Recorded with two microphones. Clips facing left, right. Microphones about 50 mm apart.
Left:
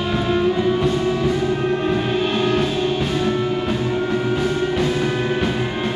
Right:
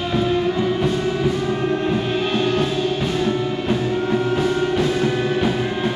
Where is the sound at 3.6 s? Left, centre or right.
Centre.